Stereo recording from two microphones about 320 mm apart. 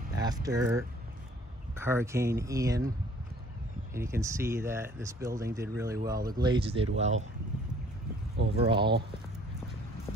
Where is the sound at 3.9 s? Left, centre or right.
Centre.